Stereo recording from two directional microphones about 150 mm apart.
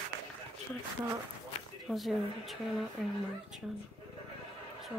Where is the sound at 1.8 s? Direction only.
Centre (ahead or behind).